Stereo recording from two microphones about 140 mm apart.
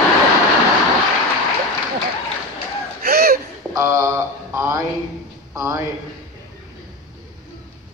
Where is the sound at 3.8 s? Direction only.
20° right (ahead or behind).